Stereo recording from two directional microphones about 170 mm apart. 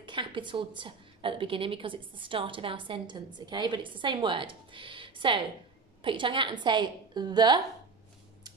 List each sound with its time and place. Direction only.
0.0 s a woman's voice: 30° right (ahead or behind)